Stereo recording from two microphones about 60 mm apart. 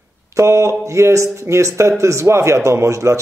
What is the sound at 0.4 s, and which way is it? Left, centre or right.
A man's voice, right.